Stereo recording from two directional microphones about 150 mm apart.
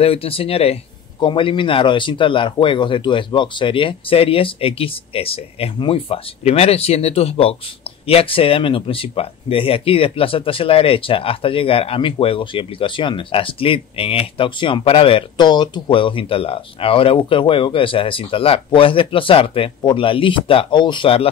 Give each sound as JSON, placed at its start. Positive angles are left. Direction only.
{"t": 0.0, "sound": "speech", "side_deg": 40}